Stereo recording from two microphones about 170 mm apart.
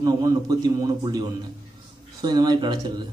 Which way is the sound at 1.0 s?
25° right (ahead or behind).